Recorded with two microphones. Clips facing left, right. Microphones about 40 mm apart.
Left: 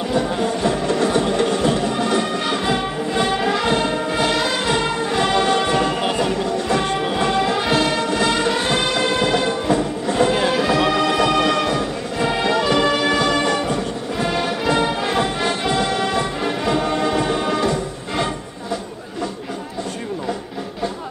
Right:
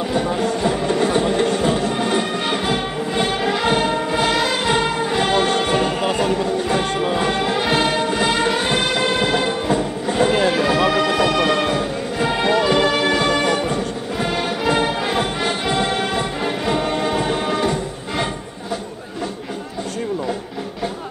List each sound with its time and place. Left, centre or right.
0.7 s music: centre
6.9 s music: centre
7.2 s music: centre
11.5 s music: centre
13.2 s music: centre